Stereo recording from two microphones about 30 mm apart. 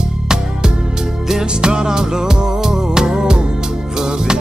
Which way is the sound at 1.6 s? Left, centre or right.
Right.